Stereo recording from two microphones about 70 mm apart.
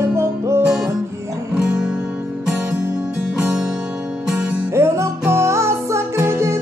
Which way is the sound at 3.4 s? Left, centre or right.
Centre.